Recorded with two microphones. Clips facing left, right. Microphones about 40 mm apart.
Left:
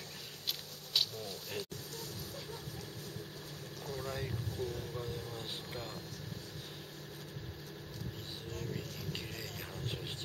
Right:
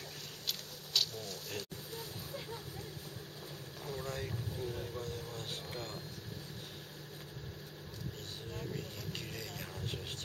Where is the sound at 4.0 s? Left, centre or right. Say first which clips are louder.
Left 1 dB; centre.